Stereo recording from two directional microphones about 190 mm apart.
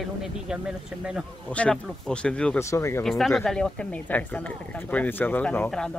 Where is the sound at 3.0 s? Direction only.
Centre (ahead or behind).